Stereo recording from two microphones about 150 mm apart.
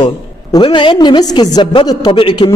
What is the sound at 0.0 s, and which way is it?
A woman's voice, 30° left (ahead or behind).